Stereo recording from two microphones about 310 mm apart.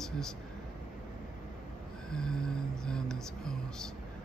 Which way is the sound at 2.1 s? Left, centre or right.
Centre.